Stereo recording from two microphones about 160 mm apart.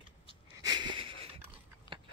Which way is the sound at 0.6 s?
25° right (ahead or behind).